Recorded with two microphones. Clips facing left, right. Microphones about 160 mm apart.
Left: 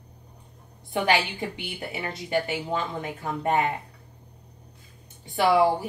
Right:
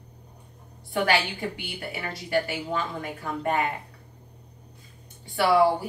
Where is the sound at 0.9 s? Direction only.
20° left (ahead or behind).